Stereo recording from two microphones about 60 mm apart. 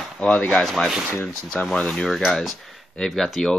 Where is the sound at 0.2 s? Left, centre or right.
Left.